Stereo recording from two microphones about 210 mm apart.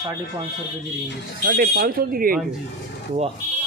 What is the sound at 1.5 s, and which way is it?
Speech, 45° right (ahead or behind).